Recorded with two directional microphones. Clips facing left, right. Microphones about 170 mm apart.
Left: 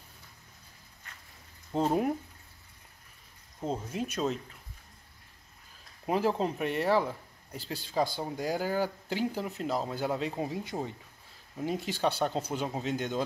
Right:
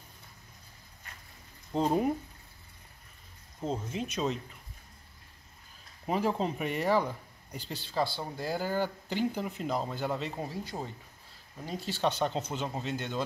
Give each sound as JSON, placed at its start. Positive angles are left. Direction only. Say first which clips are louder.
{"t": 1.7, "sound": "speech", "louder": "even", "side_deg": 5}
{"t": 3.6, "sound": "speech", "louder": "left 1 dB", "side_deg": 5}
{"t": 6.0, "sound": "speech", "louder": "left 1 dB", "side_deg": 0}
{"t": 12.0, "sound": "speech", "louder": "right 1 dB", "side_deg": 5}